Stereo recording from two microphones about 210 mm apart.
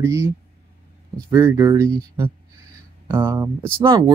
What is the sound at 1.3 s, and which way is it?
Speech, 15° right (ahead or behind).